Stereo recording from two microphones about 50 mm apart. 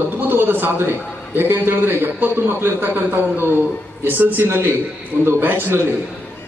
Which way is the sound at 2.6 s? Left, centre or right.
Right.